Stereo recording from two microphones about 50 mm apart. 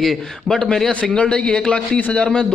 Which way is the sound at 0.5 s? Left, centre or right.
Centre.